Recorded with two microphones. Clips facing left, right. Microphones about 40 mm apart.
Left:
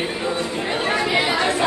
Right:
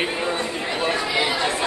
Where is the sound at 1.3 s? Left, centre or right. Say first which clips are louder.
Left 3 dB; left.